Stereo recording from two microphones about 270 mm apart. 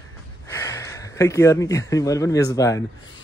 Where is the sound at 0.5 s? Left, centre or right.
Centre.